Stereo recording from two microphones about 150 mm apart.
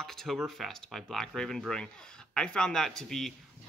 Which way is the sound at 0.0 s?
Centre (ahead or behind).